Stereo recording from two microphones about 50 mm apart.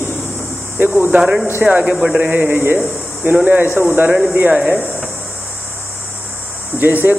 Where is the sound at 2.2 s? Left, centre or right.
Right.